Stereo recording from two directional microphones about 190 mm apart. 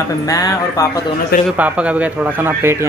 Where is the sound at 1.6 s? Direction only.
5° right (ahead or behind).